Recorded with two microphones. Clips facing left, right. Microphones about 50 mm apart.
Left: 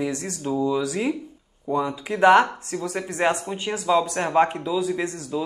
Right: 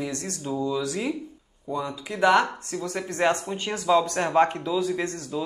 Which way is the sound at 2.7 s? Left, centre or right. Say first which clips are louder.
Left 2 dB; centre.